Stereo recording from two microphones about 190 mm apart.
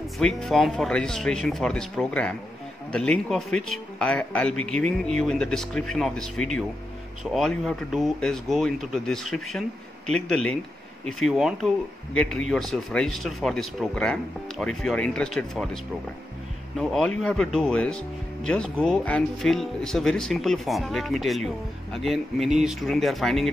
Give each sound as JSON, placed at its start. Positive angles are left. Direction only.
{"t": 0.2, "sound": "speech", "side_deg": 0}